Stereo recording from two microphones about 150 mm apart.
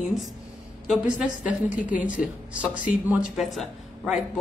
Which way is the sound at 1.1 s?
5° right (ahead or behind).